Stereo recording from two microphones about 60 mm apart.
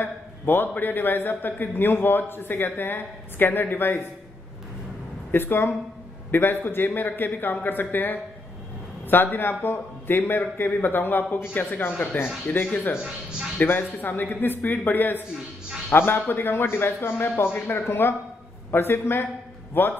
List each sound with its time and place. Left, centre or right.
0.0 s a man's voice: left
5.3 s a man's voice: left